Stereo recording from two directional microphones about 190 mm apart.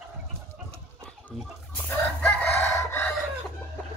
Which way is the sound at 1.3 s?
10° left (ahead or behind).